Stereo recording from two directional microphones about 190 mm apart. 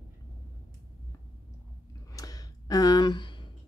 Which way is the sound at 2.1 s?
20° left (ahead or behind).